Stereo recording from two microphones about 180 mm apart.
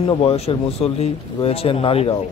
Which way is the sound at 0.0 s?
30° left (ahead or behind).